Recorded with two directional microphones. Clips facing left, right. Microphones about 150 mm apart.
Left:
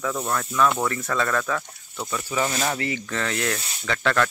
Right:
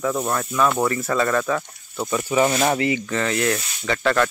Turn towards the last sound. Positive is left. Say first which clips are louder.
# right 3 dB
turn(degrees=-5)  # may be behind; listen again after turning